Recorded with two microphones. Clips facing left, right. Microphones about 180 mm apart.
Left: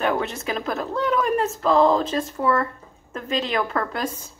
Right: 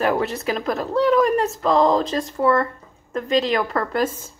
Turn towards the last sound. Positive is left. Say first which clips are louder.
# right 4 dB
turn(degrees=0)  # may be behind; listen again after turning